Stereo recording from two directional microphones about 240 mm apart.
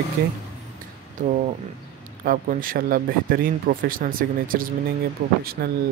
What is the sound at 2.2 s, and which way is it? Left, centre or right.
A man's voice, right.